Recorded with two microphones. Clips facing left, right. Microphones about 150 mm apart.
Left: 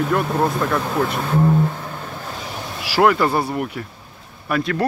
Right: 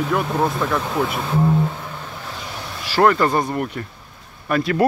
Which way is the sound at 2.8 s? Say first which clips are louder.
Even; 10° left (ahead or behind).